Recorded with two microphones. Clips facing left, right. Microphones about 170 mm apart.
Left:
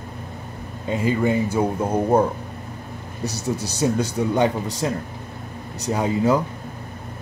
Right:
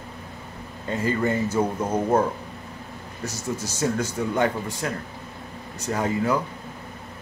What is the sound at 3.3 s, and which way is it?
Speech, 70° left (ahead or behind).